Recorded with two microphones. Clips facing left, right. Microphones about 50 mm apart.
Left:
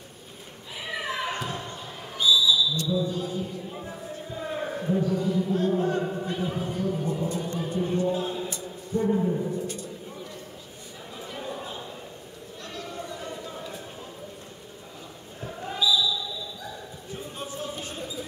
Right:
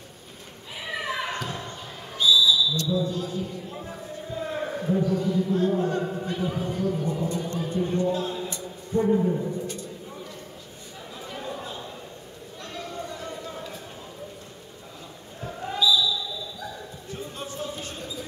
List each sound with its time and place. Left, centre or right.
0.8 s a sound: centre
1.4 s basketball bounce: centre
2.1 s whistle: centre
3.7 s a sound: centre
5.8 s speech: centre
7.3 s speech: centre
7.6 s speech: centre
9.0 s speech: centre
11.1 s chatter: centre
12.8 s a sound: centre
15.4 s basketball bounce: centre
17.1 s basketball bounce: centre